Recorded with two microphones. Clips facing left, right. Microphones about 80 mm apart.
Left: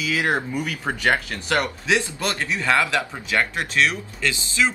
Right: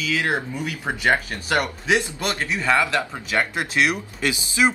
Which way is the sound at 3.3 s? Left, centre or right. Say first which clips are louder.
Left 1 dB; centre.